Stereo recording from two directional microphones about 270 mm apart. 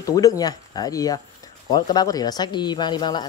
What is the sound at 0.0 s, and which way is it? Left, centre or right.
Speech, centre.